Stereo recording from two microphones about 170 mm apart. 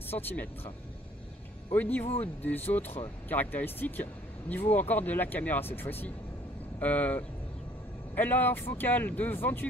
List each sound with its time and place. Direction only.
0.1 s speech: 10° left (ahead or behind)
1.7 s speech: 10° left (ahead or behind)